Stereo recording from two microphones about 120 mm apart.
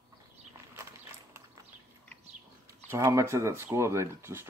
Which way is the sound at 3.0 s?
25° right (ahead or behind).